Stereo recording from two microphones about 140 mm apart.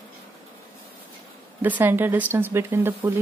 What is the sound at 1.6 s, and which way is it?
Speech, 15° right (ahead or behind).